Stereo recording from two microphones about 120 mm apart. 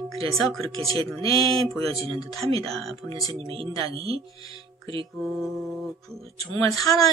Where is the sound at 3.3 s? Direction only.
50° right (ahead or behind).